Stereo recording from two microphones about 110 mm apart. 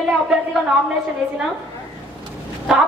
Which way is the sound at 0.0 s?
5° right (ahead or behind).